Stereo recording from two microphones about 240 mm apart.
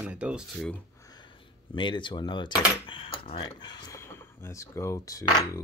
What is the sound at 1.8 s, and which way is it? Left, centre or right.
Speech, centre.